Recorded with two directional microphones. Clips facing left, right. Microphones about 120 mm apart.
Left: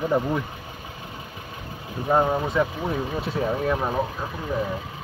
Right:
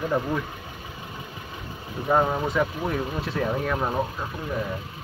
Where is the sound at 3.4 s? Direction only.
20° left (ahead or behind).